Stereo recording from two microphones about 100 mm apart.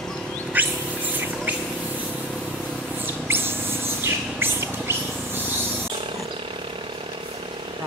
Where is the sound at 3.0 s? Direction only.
20° right (ahead or behind).